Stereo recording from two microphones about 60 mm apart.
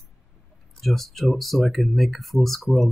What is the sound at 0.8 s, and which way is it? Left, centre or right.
Speech, centre.